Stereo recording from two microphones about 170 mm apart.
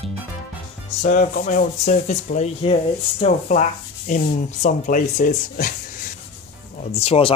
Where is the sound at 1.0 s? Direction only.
50° left (ahead or behind).